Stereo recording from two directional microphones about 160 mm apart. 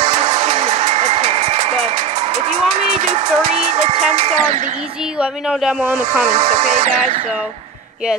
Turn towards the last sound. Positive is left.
turn(degrees=-45)  # may be behind; listen again after turning